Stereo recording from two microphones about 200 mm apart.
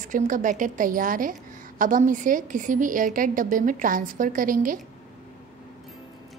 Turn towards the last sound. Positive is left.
turn(degrees=-45)  # may be behind; listen again after turning